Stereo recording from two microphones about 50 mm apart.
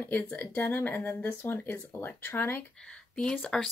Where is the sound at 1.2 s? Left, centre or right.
Left.